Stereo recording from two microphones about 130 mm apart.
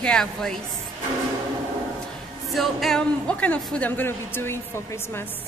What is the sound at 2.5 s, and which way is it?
A woman's voice, centre (ahead or behind).